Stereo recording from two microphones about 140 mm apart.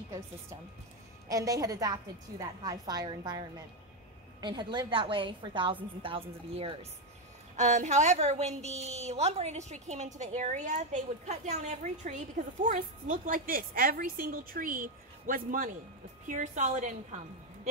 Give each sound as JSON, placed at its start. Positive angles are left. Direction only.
{"t": 1.3, "sound": "a woman's voice", "side_deg": -25}
{"t": 7.5, "sound": "a woman's voice", "side_deg": -60}
{"t": 16.3, "sound": "a woman's voice", "side_deg": -60}